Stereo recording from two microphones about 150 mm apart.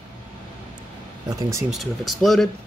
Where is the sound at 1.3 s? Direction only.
20° right (ahead or behind).